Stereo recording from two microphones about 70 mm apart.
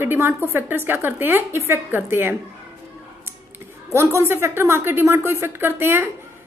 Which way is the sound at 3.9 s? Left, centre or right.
Right.